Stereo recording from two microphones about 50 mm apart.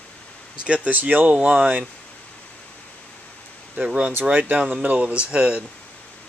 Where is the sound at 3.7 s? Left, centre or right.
Right.